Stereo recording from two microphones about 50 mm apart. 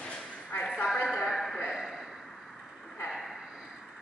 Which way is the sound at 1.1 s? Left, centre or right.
Centre.